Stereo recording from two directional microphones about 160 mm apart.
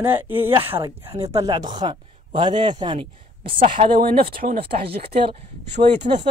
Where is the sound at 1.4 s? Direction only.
25° right (ahead or behind).